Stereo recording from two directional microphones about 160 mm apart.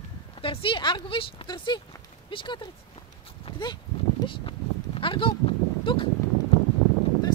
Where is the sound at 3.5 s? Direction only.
30° left (ahead or behind).